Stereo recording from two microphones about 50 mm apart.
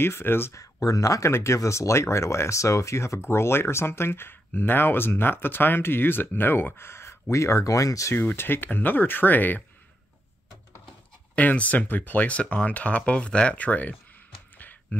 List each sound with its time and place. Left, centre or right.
0.0 s speech: left
0.5 s speech: left
8.4 s speech: left
11.3 s speech: left
14.6 s a sound: left